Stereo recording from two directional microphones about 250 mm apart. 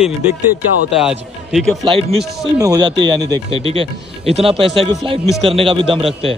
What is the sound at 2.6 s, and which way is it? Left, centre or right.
Speech, centre.